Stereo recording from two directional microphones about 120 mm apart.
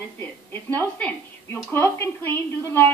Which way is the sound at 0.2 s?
15° left (ahead or behind).